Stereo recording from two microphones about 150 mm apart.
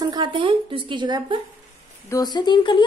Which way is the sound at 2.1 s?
25° left (ahead or behind).